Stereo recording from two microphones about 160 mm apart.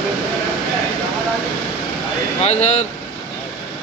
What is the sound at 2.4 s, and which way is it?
Speech, 45° left (ahead or behind).